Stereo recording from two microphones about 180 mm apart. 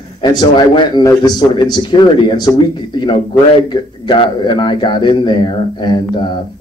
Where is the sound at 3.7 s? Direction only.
25° left (ahead or behind).